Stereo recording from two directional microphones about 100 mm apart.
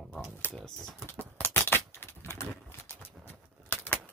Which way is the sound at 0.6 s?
5° left (ahead or behind).